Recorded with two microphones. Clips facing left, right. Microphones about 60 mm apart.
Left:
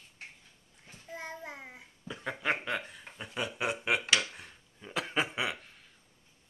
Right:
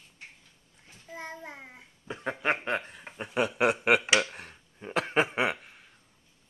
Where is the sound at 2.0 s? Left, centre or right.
Right.